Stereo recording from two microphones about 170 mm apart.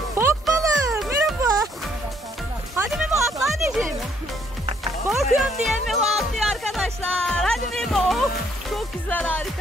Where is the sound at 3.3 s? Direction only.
Centre (ahead or behind).